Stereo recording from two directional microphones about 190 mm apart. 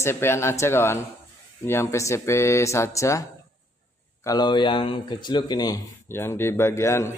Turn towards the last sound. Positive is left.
turn(degrees=15)  # may be behind; listen again after turning